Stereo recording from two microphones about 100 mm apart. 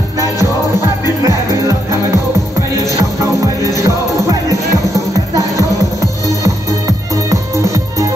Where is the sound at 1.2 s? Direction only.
35° right (ahead or behind).